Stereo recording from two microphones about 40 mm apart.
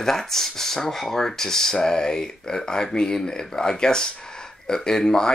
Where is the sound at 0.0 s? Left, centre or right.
Centre.